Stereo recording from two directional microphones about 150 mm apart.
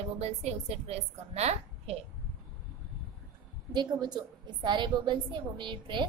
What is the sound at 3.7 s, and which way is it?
A woman's voice, 30° right (ahead or behind).